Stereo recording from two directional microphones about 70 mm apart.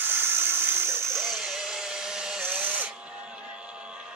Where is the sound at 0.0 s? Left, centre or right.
Right.